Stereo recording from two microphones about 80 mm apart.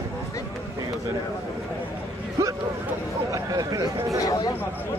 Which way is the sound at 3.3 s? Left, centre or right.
Right.